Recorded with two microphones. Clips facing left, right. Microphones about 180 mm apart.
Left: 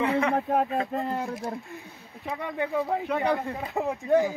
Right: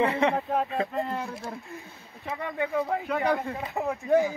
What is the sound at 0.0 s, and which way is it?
Speech, 25° right (ahead or behind).